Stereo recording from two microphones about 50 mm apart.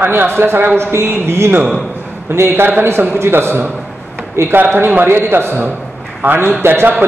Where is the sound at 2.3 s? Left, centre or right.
Right.